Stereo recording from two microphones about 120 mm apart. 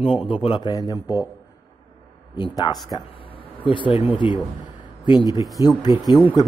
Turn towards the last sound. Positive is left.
turn(degrees=35)  # may be behind; listen again after turning